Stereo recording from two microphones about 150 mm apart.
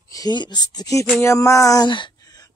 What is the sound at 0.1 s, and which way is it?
Speech, 25° left (ahead or behind).